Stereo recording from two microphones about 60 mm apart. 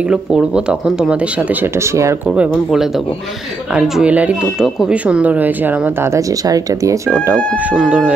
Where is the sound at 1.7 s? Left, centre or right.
Right.